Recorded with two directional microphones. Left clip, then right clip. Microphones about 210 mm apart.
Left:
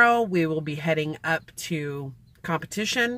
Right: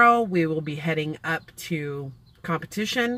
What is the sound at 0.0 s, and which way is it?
Speech, 15° left (ahead or behind).